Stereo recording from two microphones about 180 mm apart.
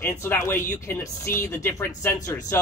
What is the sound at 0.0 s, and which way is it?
Speech, 15° left (ahead or behind).